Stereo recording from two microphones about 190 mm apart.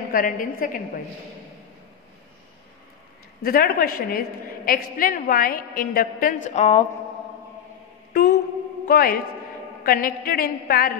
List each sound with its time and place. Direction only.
0.1 s a woman's voice: 45° left (ahead or behind)
3.4 s a woman's voice: 50° left (ahead or behind); by 6.8 s 35° left (ahead or behind)
8.1 s a sound: 55° left (ahead or behind)
8.8 s a man's voice: 50° left (ahead or behind)